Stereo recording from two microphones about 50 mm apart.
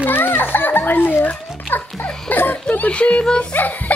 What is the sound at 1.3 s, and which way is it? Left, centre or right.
Speech, left.